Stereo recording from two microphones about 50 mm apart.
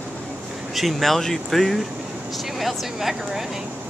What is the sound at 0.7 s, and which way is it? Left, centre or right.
Speech, centre.